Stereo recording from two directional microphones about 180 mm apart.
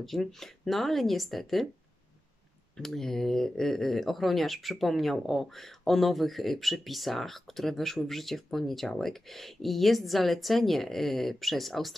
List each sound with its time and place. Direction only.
0.0 s speech: centre (ahead or behind)
2.8 s speech: centre (ahead or behind)